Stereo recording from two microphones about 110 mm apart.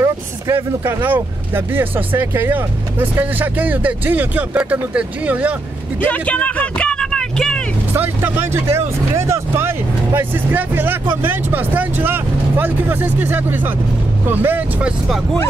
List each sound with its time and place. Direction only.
0.0 s speech: 25° right (ahead or behind)
6.0 s speech: 15° left (ahead or behind)
7.9 s speech: 20° right (ahead or behind)